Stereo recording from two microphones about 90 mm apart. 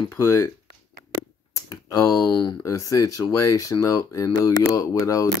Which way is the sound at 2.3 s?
55° left (ahead or behind).